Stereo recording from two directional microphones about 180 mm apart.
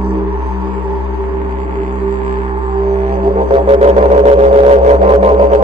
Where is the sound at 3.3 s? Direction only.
35° right (ahead or behind).